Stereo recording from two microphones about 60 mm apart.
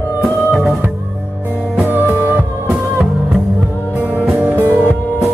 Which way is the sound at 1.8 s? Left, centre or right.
Right.